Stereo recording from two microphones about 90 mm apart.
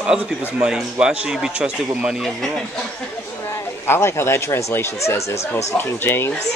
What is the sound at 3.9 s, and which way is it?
Speech, 30° left (ahead or behind).